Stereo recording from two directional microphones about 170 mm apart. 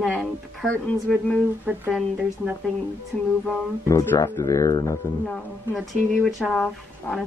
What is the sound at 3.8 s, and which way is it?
Speech, 15° left (ahead or behind).